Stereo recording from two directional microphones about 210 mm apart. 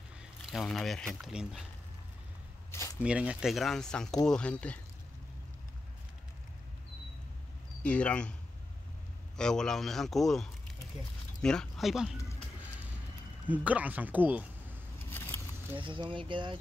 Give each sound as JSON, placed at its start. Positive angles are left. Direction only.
{"t": 0.2, "sound": "speech", "side_deg": 0}
{"t": 3.0, "sound": "speech", "side_deg": -5}
{"t": 7.8, "sound": "speech", "side_deg": 5}
{"t": 9.4, "sound": "speech", "side_deg": 5}
{"t": 13.5, "sound": "a man's voice", "side_deg": -5}
{"t": 15.0, "sound": "vehicle", "side_deg": 10}
{"t": 15.8, "sound": "speech", "side_deg": -25}